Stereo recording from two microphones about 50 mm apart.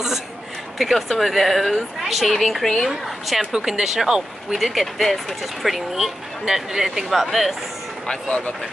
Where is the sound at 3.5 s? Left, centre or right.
Centre.